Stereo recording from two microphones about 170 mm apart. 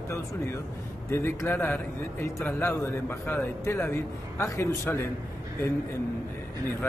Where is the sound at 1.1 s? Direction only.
15° left (ahead or behind).